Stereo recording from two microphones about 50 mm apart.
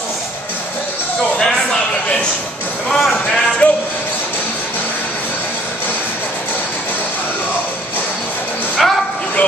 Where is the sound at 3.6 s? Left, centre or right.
Left.